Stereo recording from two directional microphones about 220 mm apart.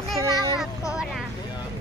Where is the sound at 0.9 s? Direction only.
Centre (ahead or behind).